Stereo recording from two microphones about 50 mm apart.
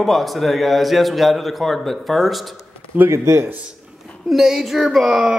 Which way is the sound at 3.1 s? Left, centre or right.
Right.